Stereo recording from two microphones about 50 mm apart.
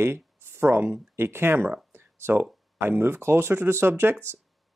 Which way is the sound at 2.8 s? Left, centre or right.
Right.